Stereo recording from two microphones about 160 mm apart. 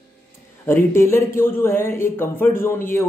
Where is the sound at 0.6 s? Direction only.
15° left (ahead or behind).